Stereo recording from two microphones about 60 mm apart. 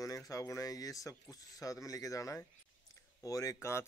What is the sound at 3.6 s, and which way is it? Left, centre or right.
Speech, left.